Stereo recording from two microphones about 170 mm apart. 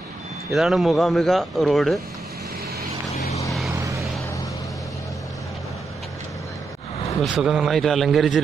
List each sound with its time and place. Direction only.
0.5 s speech: centre (ahead or behind)
3.2 s vehicle: 40° left (ahead or behind)
3.7 s vehicle: 20° right (ahead or behind)
7.2 s speech: 5° right (ahead or behind)